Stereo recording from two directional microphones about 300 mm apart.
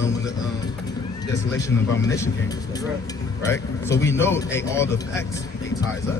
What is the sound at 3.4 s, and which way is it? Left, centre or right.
A man's voice, centre.